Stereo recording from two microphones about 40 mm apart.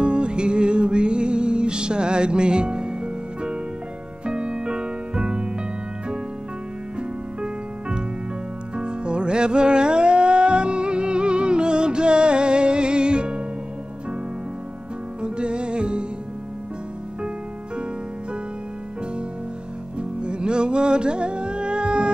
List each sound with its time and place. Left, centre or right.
0.0 s music: right
7.0 s music: right
15.2 s music: right
20.0 s music: right